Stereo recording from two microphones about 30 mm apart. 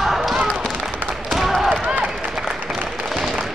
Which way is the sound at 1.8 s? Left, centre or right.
Right.